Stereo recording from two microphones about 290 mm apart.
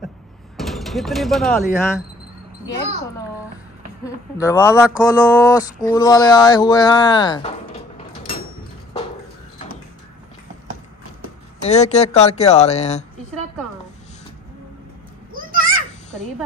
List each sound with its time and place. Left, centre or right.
0.6 s speech: centre
4.0 s speech: centre
11.6 s speech: left
15.3 s children playing: right